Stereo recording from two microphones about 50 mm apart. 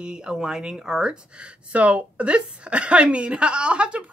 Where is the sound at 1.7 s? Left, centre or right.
Right.